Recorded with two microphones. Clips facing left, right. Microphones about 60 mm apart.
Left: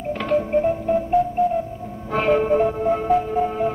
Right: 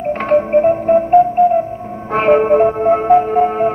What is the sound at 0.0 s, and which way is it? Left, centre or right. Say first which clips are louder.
Music: right 7 dB; right.